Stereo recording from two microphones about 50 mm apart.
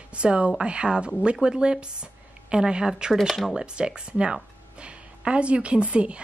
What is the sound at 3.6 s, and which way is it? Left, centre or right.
A woman's voice, centre.